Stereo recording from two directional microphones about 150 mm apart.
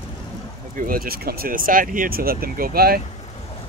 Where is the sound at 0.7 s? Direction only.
75° right (ahead or behind); by 3.0 s 90° right.